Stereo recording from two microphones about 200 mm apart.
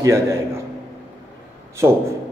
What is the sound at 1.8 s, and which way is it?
Speech, 15° right (ahead or behind).